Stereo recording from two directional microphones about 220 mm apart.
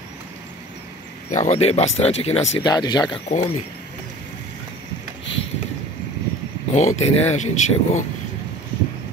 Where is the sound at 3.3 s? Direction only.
30° left (ahead or behind).